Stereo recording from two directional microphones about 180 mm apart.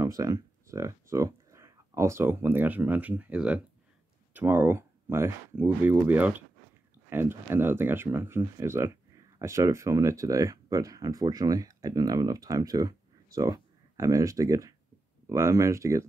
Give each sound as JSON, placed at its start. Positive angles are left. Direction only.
{"t": 0.0, "sound": "speech", "side_deg": -20}